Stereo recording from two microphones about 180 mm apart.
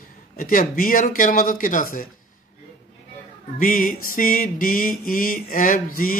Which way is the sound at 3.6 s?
50° left (ahead or behind).